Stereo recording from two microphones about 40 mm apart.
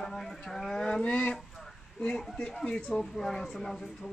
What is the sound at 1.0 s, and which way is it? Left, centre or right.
Speech, left.